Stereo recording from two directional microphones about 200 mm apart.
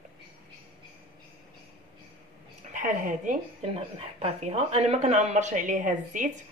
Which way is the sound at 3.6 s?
30° right (ahead or behind).